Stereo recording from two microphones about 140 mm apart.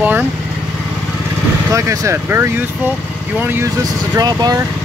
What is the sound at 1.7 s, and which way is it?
Speech, 20° right (ahead or behind).